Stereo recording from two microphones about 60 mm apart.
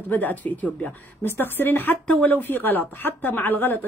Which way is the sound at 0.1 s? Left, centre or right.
Left.